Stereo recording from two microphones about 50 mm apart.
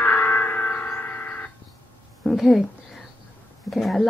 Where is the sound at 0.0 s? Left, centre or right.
Left.